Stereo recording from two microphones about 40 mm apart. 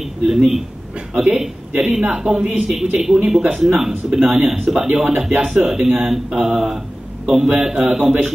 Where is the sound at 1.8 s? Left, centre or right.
Right.